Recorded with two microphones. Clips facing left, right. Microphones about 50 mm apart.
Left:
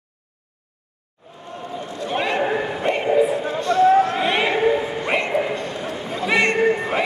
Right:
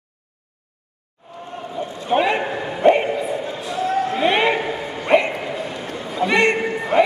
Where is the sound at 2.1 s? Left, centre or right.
Right.